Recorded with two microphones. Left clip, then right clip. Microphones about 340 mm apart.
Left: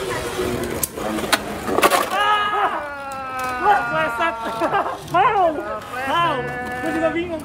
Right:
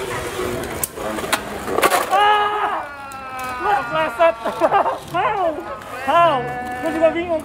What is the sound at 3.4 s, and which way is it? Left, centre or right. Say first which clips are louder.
Cat: left 2 dB; centre.